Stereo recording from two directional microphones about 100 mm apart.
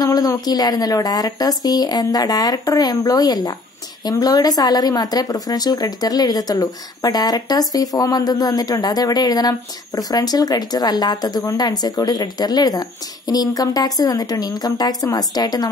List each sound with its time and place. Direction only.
0.0 s speech: 40° left (ahead or behind)